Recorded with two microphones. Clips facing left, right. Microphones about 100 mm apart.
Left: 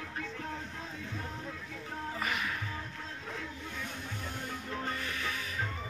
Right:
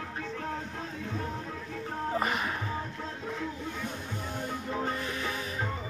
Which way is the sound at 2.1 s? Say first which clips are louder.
Right 6 dB; 35° right (ahead or behind).